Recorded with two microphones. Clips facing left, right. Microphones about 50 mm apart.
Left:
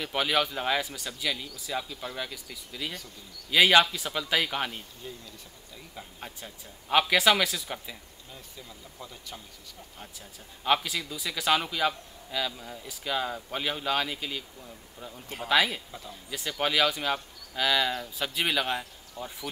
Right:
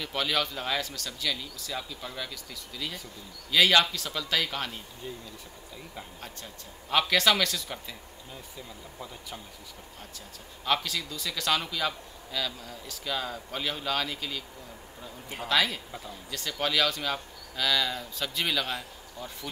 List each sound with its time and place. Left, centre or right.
0.0 s a man's voice: centre
5.0 s speech: centre
6.2 s a man's voice: centre
8.5 s speech: centre
10.6 s a man's voice: centre
15.4 s a man's voice: centre
15.9 s speech: centre
16.3 s a man's voice: centre